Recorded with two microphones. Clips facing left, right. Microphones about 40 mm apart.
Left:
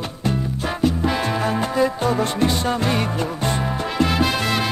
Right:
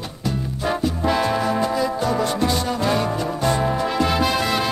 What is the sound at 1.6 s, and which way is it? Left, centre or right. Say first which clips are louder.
Music: left 1 dB; left.